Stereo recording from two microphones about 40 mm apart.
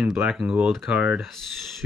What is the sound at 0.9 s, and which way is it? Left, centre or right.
Speech, right.